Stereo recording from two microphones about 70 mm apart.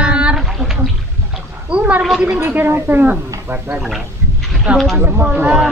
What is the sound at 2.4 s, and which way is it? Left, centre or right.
Speech, right.